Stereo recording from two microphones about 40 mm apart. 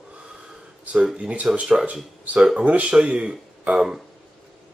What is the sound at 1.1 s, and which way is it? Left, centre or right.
Speech, right.